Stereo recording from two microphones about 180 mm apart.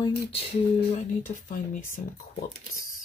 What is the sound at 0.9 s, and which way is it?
Speech, 40° left (ahead or behind).